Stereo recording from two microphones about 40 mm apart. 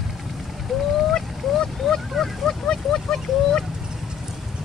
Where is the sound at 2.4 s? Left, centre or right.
Centre.